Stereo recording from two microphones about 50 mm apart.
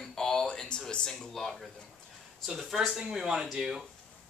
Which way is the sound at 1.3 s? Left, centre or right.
Centre.